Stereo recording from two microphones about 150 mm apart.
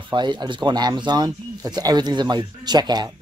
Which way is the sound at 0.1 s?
30° right (ahead or behind).